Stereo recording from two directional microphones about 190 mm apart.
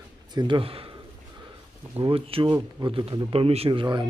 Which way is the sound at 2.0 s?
30° right (ahead or behind).